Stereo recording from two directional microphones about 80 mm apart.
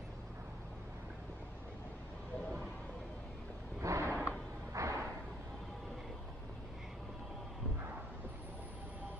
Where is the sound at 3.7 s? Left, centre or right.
Right.